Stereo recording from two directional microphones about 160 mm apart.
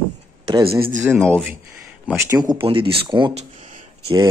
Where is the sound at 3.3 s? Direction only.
45° right (ahead or behind).